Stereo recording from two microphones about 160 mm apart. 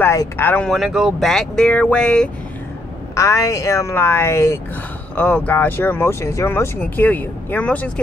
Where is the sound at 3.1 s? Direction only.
20° left (ahead or behind).